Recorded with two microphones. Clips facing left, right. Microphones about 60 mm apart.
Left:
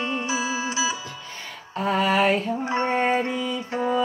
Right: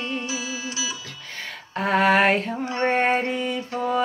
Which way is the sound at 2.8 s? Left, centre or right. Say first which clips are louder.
Right 3 dB; right.